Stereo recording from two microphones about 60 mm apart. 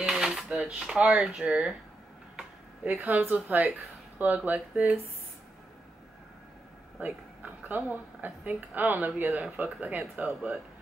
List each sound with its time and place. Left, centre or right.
0.1 s dishes: centre
1.1 s a woman's voice: centre; by 4.9 s right
7.0 s a woman's voice: right